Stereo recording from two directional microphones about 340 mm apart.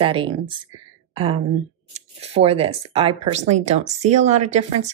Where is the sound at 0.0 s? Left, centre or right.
Centre.